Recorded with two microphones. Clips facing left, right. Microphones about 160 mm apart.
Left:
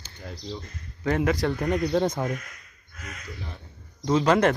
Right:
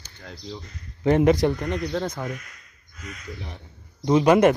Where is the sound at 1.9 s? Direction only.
20° left (ahead or behind).